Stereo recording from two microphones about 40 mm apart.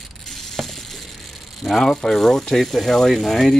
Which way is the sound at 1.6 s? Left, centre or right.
Centre.